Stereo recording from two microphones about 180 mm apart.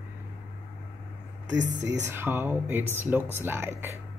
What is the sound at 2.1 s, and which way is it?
Mantra, 10° right (ahead or behind).